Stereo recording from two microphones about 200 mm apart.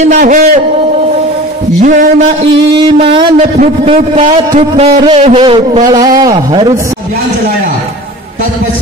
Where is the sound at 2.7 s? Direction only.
25° right (ahead or behind).